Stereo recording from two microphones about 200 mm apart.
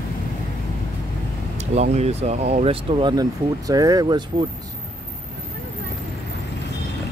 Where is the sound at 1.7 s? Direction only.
35° right (ahead or behind).